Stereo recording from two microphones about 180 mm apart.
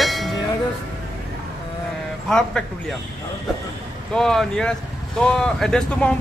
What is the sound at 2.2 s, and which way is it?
Speech, 5° left (ahead or behind).